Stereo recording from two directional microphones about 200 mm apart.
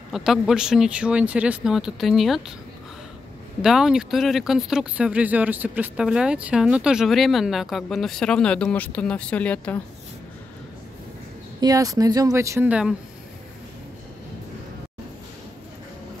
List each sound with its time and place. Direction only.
0.1 s speech: centre (ahead or behind)
3.6 s speech: 5° right (ahead or behind)
11.6 s speech: 20° right (ahead or behind)